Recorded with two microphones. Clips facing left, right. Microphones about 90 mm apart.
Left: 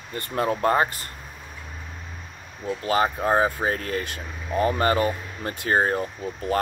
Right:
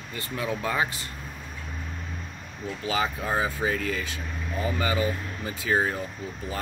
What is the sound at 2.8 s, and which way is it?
Speech, 45° left (ahead or behind).